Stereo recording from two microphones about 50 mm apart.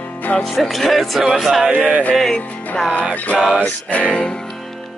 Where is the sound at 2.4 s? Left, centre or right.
Left.